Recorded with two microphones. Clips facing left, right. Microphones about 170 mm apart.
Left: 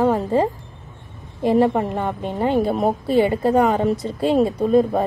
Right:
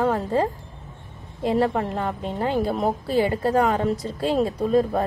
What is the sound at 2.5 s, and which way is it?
Speech, 20° left (ahead or behind).